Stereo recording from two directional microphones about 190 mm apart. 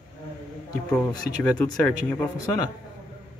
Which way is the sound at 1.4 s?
5° left (ahead or behind).